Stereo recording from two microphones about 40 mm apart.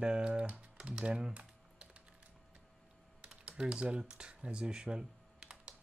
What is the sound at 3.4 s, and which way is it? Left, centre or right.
Speech, right.